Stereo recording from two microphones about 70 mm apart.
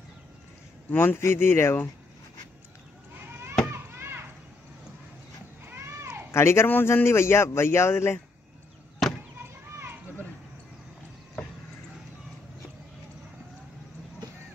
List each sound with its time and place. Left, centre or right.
0.9 s a man's voice: left
3.2 s chop: right
3.7 s children playing: right
5.7 s a sound: right
6.3 s a man's voice: left
9.0 s chop: centre
9.4 s children playing: right